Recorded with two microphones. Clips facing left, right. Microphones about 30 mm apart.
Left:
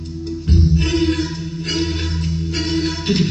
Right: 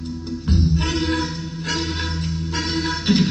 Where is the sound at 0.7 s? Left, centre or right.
Centre.